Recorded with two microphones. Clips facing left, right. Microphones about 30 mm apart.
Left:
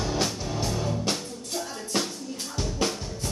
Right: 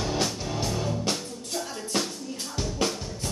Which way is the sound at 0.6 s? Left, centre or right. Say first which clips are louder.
Even; centre.